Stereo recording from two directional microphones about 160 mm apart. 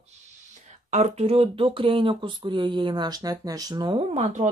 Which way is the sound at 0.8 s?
45° right (ahead or behind).